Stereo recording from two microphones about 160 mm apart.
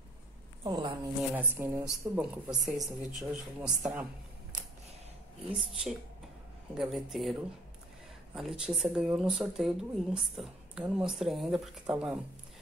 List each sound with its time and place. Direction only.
0.7 s a sound: 30° right (ahead or behind)
1.3 s speech: 15° right (ahead or behind)
2.4 s speech: 25° right (ahead or behind)
3.2 s speech: 5° right (ahead or behind)
5.5 s speech: centre (ahead or behind)
8.4 s speech: 5° right (ahead or behind)